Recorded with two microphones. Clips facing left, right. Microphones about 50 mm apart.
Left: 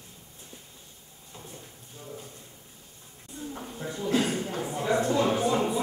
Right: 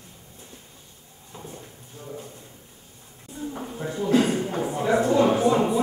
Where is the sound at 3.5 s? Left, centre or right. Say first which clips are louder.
Right 5 dB; centre.